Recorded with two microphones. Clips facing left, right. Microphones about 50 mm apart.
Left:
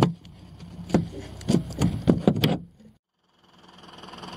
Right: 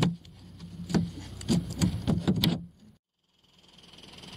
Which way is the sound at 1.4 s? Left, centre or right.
Left.